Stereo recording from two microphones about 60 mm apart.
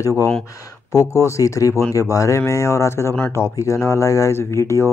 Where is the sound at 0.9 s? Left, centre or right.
Left.